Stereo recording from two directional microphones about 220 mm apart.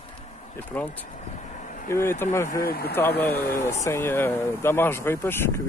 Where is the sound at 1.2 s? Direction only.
35° left (ahead or behind).